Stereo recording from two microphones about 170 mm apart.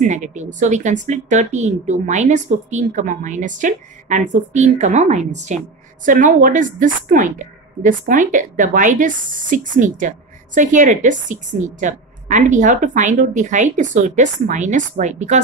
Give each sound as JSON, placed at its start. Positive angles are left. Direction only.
{"t": 0.0, "sound": "a woman's voice", "side_deg": -45}